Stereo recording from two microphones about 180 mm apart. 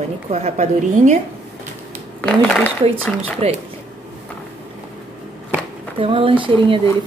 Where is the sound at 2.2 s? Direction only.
5° left (ahead or behind).